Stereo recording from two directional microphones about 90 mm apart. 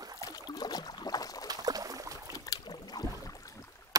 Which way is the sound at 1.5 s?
45° right (ahead or behind).